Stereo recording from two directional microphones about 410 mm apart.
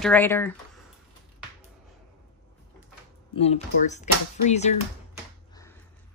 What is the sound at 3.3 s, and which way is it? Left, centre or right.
Speech, centre.